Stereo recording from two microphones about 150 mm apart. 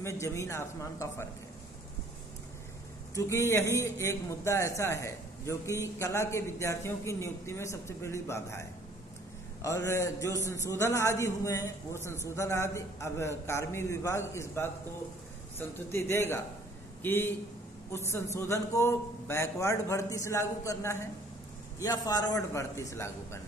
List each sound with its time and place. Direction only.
0.0 s a man's voice: 20° left (ahead or behind)
3.2 s a man's voice: 20° left (ahead or behind)
15.9 s a man's voice: 15° left (ahead or behind)